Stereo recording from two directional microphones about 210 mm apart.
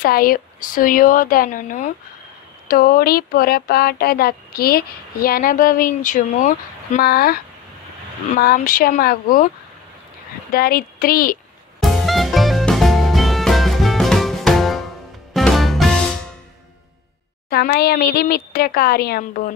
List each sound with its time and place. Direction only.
0.0 s speech: 45° left (ahead or behind)
8.4 s speech: 45° left (ahead or behind)
10.5 s speech: 45° left (ahead or behind)
11.8 s music: centre (ahead or behind)
17.5 s speech: 50° left (ahead or behind)